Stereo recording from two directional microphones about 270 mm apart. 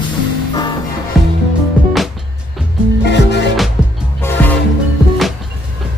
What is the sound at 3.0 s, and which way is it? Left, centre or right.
Music, left.